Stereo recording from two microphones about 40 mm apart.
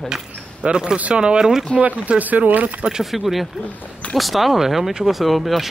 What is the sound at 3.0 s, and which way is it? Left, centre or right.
Speech, centre.